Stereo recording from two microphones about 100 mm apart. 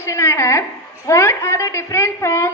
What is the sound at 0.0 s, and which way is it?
A woman's voice, 30° left (ahead or behind).